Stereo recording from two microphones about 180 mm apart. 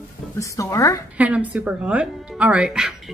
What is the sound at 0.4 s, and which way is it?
Speech, 15° left (ahead or behind).